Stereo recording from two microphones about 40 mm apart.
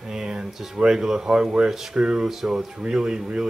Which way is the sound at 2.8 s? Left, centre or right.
Right.